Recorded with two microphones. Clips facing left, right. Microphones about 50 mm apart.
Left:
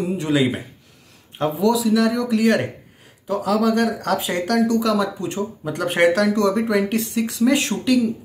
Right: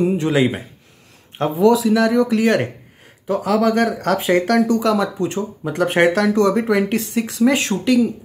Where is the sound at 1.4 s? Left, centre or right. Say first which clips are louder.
Right 4 dB; right.